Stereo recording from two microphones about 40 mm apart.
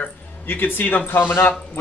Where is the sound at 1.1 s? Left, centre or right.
Left.